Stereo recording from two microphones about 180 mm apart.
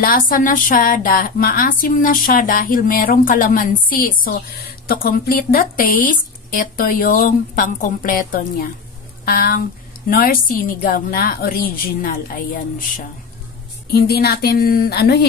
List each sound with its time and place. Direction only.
0.0 s a woman's voice: 50° left (ahead or behind)